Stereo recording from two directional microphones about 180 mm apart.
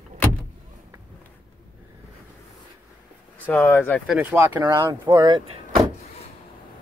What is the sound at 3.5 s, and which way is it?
Speech, 10° left (ahead or behind).